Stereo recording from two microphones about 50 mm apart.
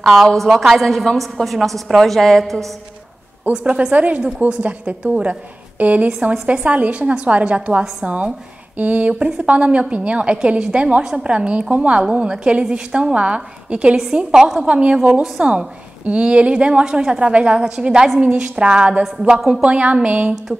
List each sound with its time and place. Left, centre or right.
0.0 s a woman's voice: centre
3.6 s a woman's voice: right
6.3 s a woman's voice: right
14.1 s a woman's voice: centre